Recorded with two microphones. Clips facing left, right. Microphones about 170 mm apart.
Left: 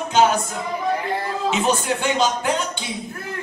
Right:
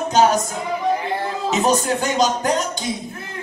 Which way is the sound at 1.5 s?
40° right (ahead or behind).